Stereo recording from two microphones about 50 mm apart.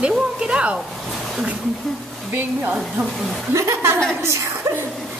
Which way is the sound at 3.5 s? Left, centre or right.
Right.